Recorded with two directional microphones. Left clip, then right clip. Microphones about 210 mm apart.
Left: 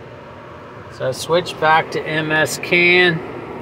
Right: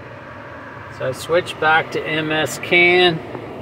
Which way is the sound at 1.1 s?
10° left (ahead or behind).